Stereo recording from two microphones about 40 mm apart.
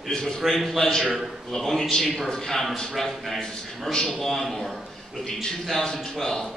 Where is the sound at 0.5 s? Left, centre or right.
Centre.